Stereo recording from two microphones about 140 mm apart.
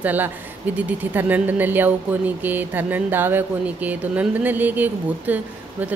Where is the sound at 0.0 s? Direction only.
10° right (ahead or behind).